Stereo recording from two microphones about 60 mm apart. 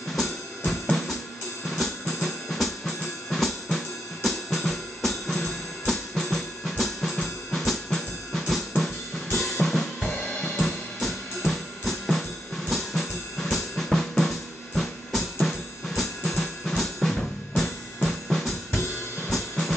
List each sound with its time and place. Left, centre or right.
0.1 s drum kit: centre
2.1 s drum kit: centre
10.2 s music: centre
10.6 s drum kit: centre
14.8 s drum: centre